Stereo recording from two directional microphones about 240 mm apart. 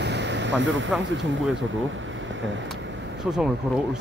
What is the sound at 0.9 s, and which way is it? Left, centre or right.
Speech, right.